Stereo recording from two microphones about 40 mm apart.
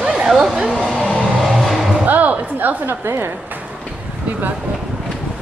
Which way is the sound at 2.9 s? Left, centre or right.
Right.